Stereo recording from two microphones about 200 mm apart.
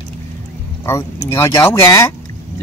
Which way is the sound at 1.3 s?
15° left (ahead or behind).